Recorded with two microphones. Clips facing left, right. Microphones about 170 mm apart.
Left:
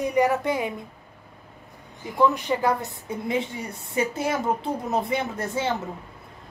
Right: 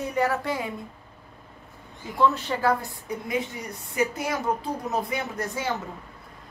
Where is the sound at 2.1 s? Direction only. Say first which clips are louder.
Left 2 dB; 15° left (ahead or behind).